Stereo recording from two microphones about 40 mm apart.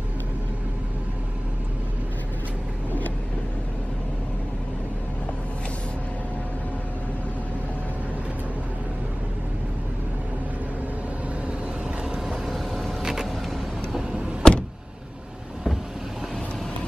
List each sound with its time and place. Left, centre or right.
12.1 s vehicle: centre
12.5 s vehicle: centre
13.0 s vehicle: centre
14.4 s vehicle: centre